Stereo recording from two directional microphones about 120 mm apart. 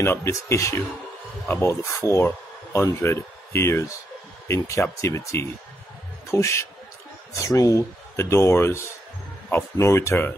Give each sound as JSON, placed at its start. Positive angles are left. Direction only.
{"t": 0.0, "sound": "speech", "side_deg": 20}